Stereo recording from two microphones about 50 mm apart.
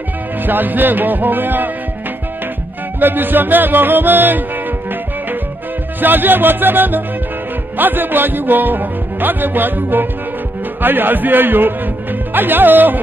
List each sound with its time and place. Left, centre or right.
0.5 s speech: right
3.0 s speech: right
5.9 s a man's voice: right